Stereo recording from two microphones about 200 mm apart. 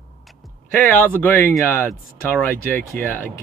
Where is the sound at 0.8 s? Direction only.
10° left (ahead or behind).